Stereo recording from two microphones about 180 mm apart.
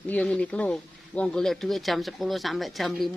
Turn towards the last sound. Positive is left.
turn(degrees=0)  # may be behind; listen again after turning